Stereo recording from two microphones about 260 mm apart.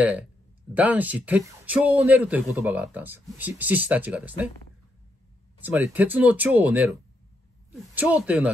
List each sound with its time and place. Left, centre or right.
0.7 s speech: centre
5.6 s speech: centre